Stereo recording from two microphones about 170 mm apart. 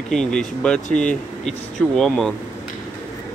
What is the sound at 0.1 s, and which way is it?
Speech, 5° left (ahead or behind).